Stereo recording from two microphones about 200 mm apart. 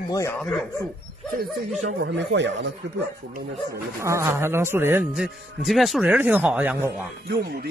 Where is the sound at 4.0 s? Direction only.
15° right (ahead or behind).